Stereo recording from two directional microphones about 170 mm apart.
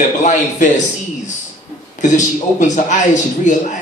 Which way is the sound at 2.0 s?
45° left (ahead or behind).